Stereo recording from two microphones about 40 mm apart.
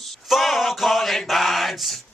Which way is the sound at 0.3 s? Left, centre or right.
Centre.